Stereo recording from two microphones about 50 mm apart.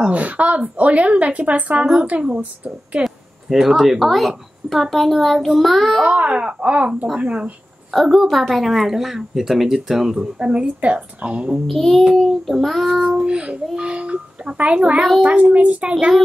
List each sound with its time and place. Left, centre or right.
0.1 s a child's voice: right
3.0 s a woman's voice: centre
6.0 s a child's voice: right
7.9 s a woman's voice: centre
10.1 s a child's voice: centre
11.5 s a woman's voice: centre
13.2 s a child's voice: centre